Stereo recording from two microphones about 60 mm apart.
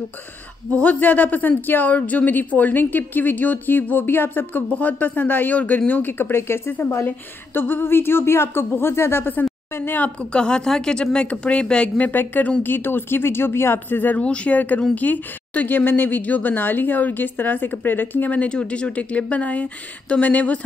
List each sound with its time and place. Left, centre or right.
0.8 s a woman's voice: left
10.3 s speech: centre
12.1 s a woman's voice: left
14.1 s speech: centre